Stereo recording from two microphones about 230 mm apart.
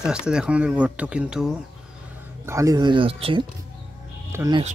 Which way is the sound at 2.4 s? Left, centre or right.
Centre.